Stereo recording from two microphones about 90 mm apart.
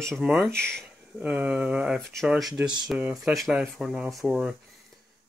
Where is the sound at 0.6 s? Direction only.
10° left (ahead or behind).